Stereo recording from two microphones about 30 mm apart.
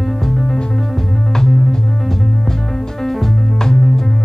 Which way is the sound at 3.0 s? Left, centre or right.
Centre.